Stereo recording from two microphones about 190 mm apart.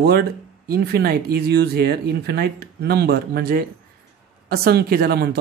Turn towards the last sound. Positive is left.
turn(degrees=-55)  # may be behind; listen again after turning